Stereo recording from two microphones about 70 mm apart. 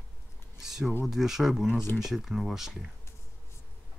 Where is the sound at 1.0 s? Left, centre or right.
Centre.